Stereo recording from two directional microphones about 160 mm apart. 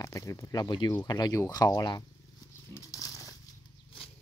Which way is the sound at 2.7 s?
20° left (ahead or behind).